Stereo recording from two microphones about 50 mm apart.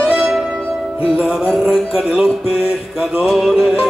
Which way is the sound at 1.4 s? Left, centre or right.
Centre.